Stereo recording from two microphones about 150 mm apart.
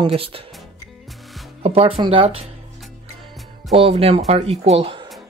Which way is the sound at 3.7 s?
40° right (ahead or behind).